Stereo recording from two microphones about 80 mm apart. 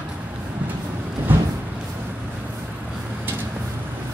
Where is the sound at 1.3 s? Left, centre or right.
Right.